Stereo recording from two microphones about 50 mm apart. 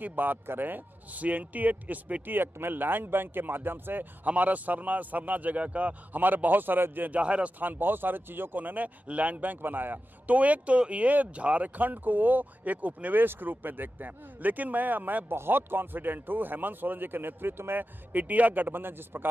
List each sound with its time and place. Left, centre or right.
0.0 s speech: right
2.2 s speech: right
7.2 s speech: right
7.6 s speech: right
15.3 s speech: right